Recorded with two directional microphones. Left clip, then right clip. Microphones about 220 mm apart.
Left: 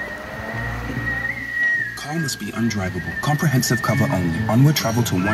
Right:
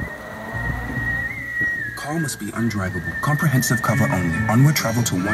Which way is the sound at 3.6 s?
50° right (ahead or behind).